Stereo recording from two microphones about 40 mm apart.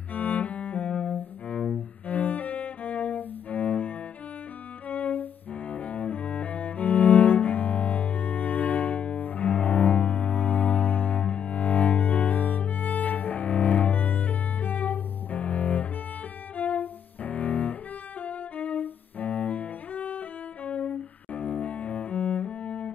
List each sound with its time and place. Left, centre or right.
0.1 s cello: left
2.0 s cello: left
16.5 s bowed string instrument: left